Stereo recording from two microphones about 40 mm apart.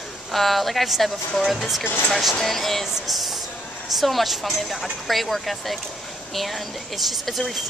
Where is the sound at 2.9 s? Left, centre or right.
Centre.